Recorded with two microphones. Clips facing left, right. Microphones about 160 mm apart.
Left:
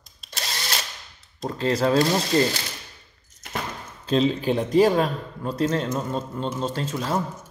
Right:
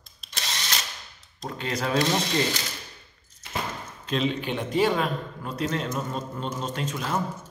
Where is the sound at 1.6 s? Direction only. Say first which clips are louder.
Left 6 dB; 35° left (ahead or behind).